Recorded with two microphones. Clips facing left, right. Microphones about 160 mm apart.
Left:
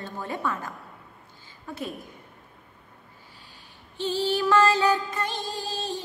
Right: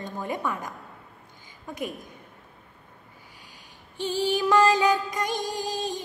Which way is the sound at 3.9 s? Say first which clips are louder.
Even; 15° right (ahead or behind).